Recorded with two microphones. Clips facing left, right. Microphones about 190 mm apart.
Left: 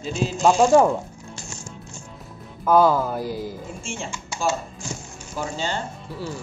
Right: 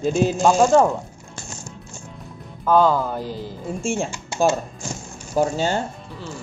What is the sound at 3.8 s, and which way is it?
Speech, 45° right (ahead or behind).